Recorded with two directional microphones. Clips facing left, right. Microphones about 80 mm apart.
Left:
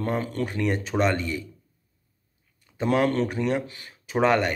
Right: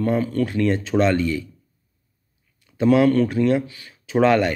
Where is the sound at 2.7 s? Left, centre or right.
Left.